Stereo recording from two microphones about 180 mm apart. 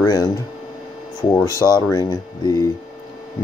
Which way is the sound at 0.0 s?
20° left (ahead or behind).